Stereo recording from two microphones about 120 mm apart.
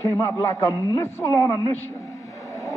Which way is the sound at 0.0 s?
25° left (ahead or behind).